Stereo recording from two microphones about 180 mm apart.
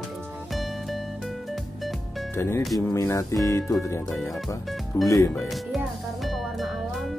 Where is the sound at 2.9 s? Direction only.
15° left (ahead or behind).